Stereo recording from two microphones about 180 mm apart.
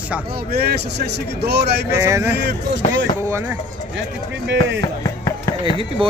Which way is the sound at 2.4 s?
70° right (ahead or behind).